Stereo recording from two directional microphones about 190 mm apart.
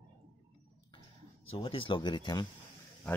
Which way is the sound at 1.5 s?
30° left (ahead or behind).